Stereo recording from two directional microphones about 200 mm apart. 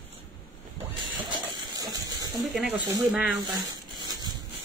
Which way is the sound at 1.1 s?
20° right (ahead or behind).